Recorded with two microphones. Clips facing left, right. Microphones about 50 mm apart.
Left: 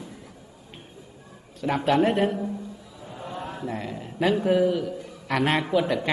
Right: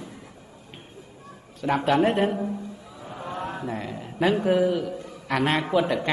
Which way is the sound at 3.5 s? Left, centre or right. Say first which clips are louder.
Right 1 dB; centre.